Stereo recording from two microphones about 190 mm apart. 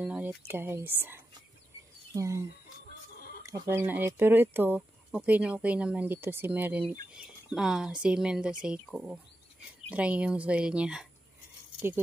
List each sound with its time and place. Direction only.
0.0 s a sound: 5° right (ahead or behind)
0.5 s speech: 10° right (ahead or behind)
3.4 s speech: 15° right (ahead or behind)